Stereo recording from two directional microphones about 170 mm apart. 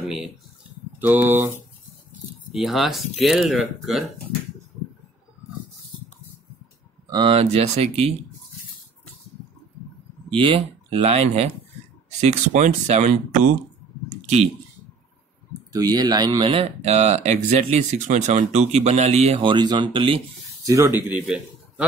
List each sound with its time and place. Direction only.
0.0 s a sound: 5° right (ahead or behind)
0.9 s speech: 10° right (ahead or behind)
2.5 s speech: centre (ahead or behind)
7.1 s speech: 30° right (ahead or behind)
10.3 s speech: 30° right (ahead or behind); by 13.5 s 45° right (ahead or behind)
14.0 s a sound: 40° right (ahead or behind)
15.7 s speech: 20° right (ahead or behind)
20.6 s speech: 15° right (ahead or behind)